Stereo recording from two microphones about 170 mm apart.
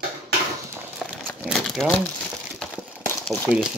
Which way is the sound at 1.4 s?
Centre (ahead or behind).